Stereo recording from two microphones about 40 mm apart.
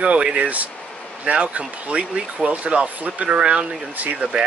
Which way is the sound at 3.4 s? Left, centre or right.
Right.